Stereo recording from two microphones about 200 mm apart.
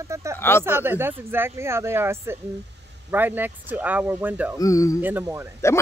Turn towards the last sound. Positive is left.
turn(degrees=15)  # may be behind; listen again after turning